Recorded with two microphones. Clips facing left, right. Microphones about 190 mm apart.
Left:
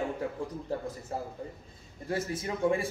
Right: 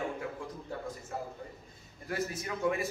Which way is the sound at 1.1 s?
30° left (ahead or behind).